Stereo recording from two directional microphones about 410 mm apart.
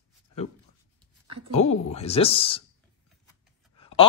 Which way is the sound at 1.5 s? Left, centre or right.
Centre.